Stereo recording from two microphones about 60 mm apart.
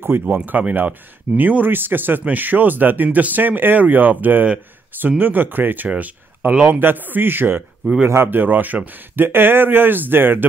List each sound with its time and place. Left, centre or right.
0.2 s speech: right
6.7 s speech: right